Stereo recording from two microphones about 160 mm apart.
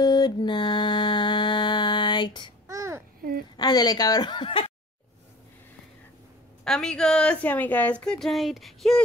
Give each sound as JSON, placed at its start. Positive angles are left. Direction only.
{"t": 0.0, "sound": "mantra", "side_deg": 25}
{"t": 2.7, "sound": "babbling", "side_deg": -20}
{"t": 3.2, "sound": "a sound", "side_deg": -65}
{"t": 3.5, "sound": "a woman's voice", "side_deg": 25}
{"t": 6.6, "sound": "a woman's voice", "side_deg": 5}